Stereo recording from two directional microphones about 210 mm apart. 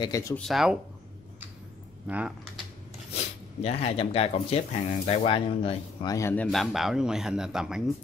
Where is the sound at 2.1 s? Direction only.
5° right (ahead or behind).